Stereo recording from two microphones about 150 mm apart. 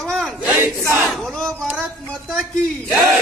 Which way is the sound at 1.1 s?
Centre (ahead or behind).